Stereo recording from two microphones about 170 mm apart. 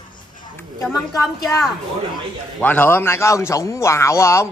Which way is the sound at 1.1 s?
15° left (ahead or behind).